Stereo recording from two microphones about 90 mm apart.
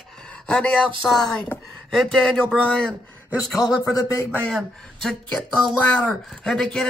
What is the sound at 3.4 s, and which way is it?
Speech, 45° left (ahead or behind).